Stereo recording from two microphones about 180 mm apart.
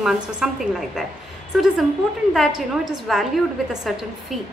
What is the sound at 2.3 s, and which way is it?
A man's voice, centre (ahead or behind).